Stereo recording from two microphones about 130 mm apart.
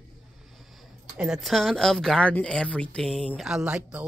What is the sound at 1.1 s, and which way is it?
Speech, 5° right (ahead or behind).